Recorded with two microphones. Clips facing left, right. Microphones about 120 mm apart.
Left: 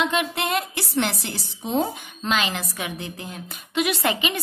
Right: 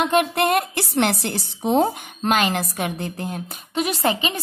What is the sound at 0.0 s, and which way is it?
A woman's voice, 50° right (ahead or behind).